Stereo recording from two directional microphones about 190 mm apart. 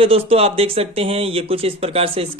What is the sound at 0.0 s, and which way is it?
Speech, 30° right (ahead or behind).